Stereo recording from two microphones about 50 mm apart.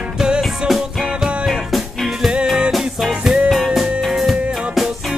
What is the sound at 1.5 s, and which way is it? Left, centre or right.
Music, centre.